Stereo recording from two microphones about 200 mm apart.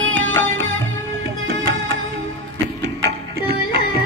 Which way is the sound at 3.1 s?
50° right (ahead or behind).